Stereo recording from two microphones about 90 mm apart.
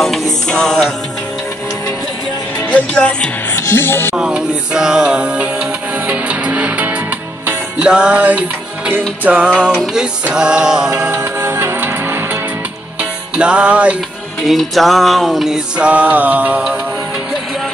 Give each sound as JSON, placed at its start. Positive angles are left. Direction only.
{"t": 0.0, "sound": "music", "side_deg": 5}
{"t": 2.9, "sound": "speech", "side_deg": 10}
{"t": 3.5, "sound": "speech", "side_deg": 25}
{"t": 4.2, "sound": "music", "side_deg": -10}
{"t": 11.0, "sound": "music", "side_deg": -25}
{"t": 13.4, "sound": "music", "side_deg": -10}
{"t": 14.4, "sound": "music", "side_deg": 0}